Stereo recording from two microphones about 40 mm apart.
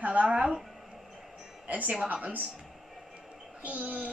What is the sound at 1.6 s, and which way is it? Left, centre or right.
Speech, right.